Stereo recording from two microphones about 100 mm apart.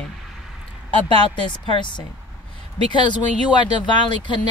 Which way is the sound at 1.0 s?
55° left (ahead or behind).